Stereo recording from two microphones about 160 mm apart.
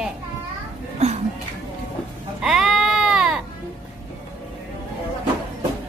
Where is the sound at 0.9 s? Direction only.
45° right (ahead or behind).